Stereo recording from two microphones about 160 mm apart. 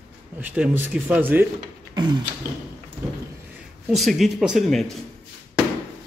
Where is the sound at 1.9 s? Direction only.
25° right (ahead or behind).